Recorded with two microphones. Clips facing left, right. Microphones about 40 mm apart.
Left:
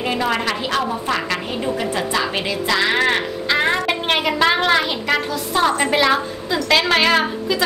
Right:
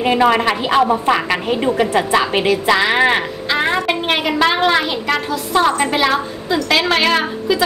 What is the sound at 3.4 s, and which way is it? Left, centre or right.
A woman's voice, centre.